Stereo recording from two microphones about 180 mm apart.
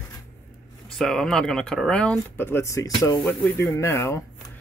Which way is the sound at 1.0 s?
Centre (ahead or behind).